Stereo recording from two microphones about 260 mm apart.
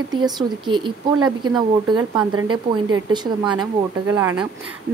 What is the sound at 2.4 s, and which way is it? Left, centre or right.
Speech, right.